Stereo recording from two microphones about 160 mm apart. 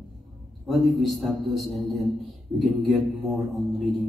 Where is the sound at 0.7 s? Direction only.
Centre (ahead or behind).